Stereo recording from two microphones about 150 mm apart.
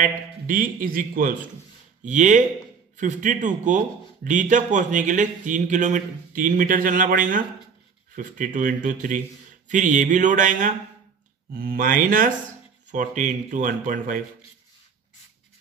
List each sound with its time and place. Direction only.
0.0 s a man's voice: 65° right (ahead or behind)
2.0 s a man's voice: 55° right (ahead or behind)
11.5 s a man's voice: 70° right (ahead or behind)